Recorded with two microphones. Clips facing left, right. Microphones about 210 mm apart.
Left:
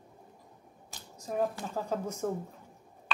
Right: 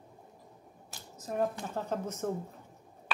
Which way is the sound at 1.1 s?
Centre (ahead or behind).